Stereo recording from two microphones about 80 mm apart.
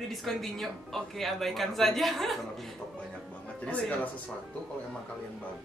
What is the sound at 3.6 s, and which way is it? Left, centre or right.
Speech, centre.